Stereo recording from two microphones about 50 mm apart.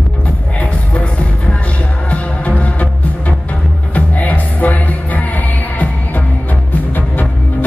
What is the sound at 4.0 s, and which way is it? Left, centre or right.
Music, left.